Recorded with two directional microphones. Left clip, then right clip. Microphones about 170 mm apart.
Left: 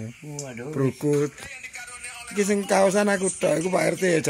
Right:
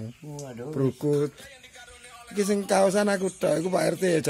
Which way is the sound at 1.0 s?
Centre (ahead or behind).